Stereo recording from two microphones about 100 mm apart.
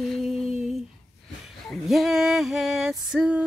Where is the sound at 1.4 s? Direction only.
Centre (ahead or behind).